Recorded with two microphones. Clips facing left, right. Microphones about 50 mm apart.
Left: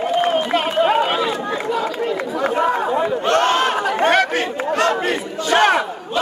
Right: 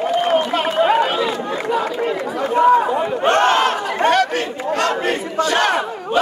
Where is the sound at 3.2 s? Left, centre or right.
Right.